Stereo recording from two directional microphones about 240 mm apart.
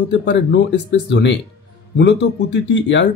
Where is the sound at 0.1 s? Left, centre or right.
Left.